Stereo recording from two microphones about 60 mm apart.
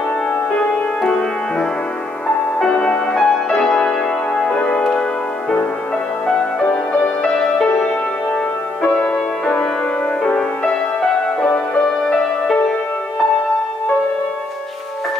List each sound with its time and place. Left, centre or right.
0.5 s music: centre
2.2 s music: centre
6.2 s music: centre
7.6 s music: centre